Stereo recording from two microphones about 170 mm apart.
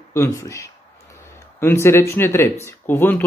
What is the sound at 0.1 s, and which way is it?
Speech, 15° left (ahead or behind).